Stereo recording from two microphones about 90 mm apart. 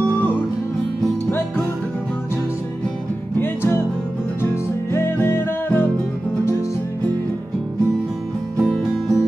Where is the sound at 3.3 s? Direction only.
25° left (ahead or behind).